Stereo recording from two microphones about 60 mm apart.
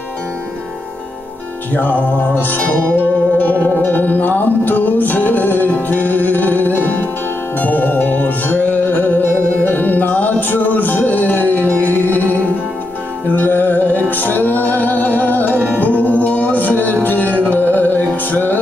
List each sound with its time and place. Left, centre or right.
1.7 s music: left
13.4 s music: left